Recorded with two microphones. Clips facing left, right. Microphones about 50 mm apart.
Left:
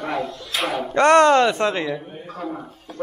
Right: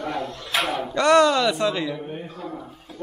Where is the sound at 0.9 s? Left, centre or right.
Left.